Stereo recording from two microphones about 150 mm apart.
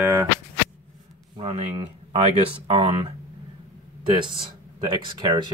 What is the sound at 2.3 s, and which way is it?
Speech, 40° right (ahead or behind).